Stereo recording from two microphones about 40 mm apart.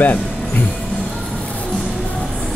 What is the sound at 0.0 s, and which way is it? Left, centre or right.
Music, left.